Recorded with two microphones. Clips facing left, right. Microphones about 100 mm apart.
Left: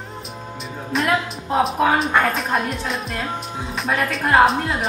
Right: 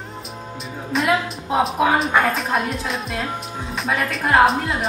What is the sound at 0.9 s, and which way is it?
Speech, centre (ahead or behind).